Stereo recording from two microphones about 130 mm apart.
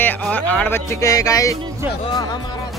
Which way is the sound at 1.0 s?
25° left (ahead or behind).